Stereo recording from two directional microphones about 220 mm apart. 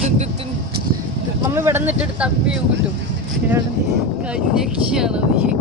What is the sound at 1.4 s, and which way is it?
Speech, 10° right (ahead or behind).